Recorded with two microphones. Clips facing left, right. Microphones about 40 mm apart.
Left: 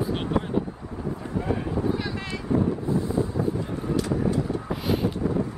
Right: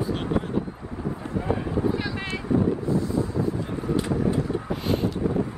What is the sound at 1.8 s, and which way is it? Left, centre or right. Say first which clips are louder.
Vehicle: right 2 dB; right.